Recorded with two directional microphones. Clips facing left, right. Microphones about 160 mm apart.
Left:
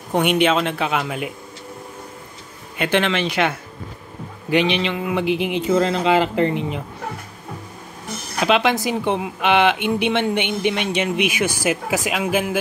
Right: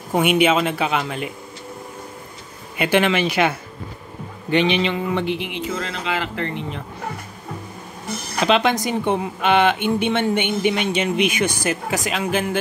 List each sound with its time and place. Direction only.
0.1 s speech: 5° right (ahead or behind)
2.8 s speech: 10° right (ahead or behind)
5.8 s speech: 25° left (ahead or behind)
8.4 s speech: 5° left (ahead or behind)